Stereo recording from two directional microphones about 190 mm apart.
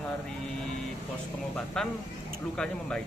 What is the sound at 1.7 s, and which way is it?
A man's voice, 5° left (ahead or behind).